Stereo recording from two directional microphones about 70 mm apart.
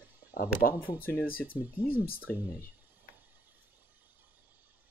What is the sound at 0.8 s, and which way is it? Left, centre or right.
Speech, left.